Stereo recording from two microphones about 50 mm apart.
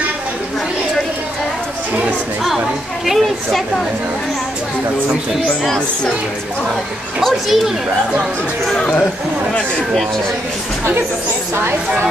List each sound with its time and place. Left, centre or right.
3.1 s speech: centre
7.2 s speech: centre
8.7 s speech: left